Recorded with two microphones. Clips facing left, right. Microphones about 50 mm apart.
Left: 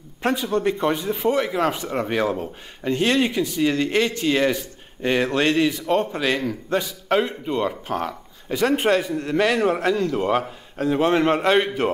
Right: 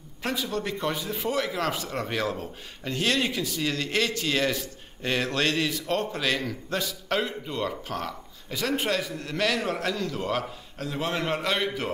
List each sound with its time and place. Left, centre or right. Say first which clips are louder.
0.2 s a man's voice: left 8 dB; left